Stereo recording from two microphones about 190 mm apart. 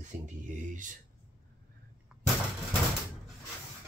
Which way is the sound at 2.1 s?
5° right (ahead or behind).